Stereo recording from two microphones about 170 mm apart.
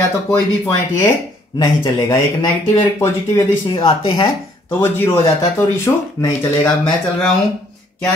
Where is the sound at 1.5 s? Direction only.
20° left (ahead or behind).